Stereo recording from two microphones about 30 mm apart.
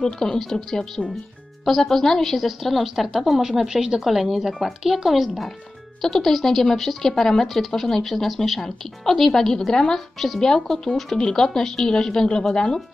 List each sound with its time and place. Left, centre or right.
0.0 s a woman's voice: left; by 4.0 s centre
4.0 s a woman's voice: centre
5.9 s speech: centre
9.7 s a woman's voice: left
10.1 s a woman's voice: centre
10.4 s a woman's voice: left